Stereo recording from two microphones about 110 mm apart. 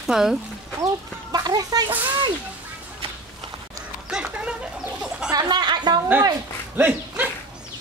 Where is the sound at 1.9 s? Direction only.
15° right (ahead or behind).